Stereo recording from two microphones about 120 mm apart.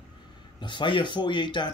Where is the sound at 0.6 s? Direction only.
40° left (ahead or behind).